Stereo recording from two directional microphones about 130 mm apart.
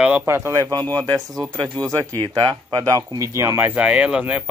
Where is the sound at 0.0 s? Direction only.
10° right (ahead or behind).